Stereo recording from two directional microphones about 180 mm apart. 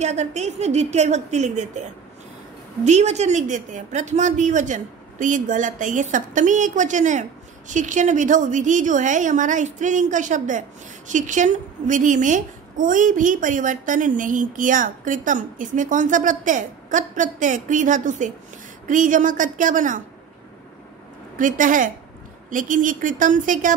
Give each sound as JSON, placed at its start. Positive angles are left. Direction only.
{"t": 0.0, "sound": "a woman's voice", "side_deg": -40}
{"t": 21.4, "sound": "a woman's voice", "side_deg": -45}